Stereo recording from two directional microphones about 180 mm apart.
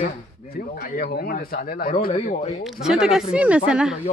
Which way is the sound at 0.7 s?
60° left (ahead or behind).